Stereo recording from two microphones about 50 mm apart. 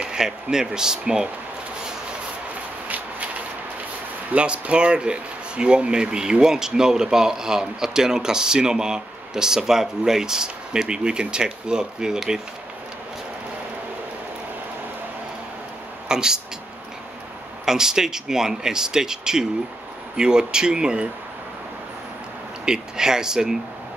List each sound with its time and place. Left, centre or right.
0.0 s speech: centre
4.4 s speech: right
16.1 s speech: centre
17.6 s speech: centre
22.7 s speech: centre